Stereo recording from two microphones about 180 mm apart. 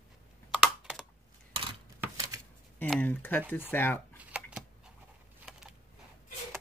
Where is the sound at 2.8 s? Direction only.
10° left (ahead or behind).